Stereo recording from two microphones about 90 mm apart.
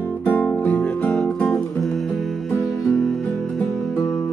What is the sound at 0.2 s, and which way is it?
Music, 15° left (ahead or behind).